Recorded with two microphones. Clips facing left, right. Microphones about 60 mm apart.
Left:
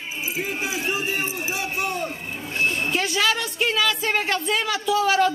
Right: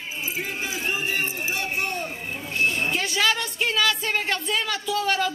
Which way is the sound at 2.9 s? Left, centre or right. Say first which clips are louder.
Left 1 dB; centre.